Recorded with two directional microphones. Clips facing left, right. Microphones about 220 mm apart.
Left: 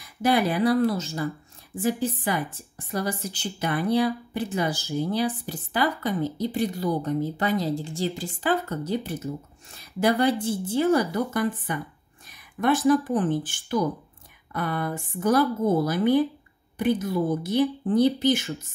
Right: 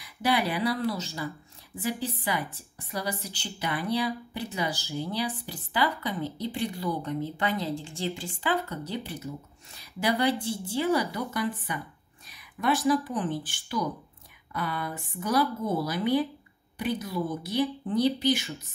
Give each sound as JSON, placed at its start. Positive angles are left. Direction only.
{"t": 0.0, "sound": "speech", "side_deg": 50}
{"t": 12.3, "sound": "a sound", "side_deg": 50}
{"t": 12.8, "sound": "speech", "side_deg": 45}